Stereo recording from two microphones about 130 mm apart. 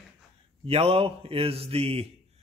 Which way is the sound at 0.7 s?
50° right (ahead or behind).